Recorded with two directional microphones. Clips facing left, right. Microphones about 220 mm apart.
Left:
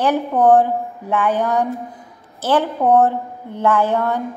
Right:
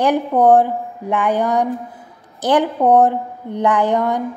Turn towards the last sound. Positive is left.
turn(degrees=-15)  # may be behind; listen again after turning